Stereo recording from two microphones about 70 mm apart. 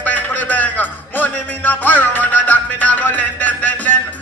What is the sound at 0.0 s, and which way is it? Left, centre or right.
Music, left.